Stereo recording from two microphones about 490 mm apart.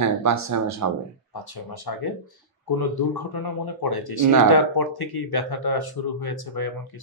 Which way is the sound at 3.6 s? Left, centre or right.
Left.